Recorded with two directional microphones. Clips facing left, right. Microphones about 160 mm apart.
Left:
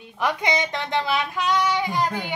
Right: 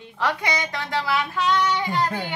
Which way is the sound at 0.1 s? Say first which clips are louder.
Left 1 dB; 15° left (ahead or behind).